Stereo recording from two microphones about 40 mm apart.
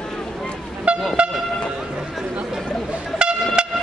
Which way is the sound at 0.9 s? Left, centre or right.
Right.